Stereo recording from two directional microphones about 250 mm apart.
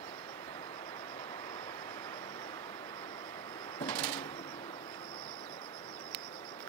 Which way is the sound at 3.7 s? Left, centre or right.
Centre.